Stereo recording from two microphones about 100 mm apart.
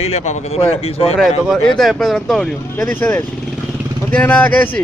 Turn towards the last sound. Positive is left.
turn(degrees=15)  # may be behind; listen again after turning